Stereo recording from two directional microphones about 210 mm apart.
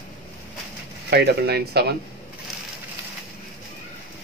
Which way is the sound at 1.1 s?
50° right (ahead or behind).